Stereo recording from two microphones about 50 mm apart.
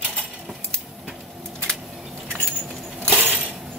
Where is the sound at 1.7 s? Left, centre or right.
Centre.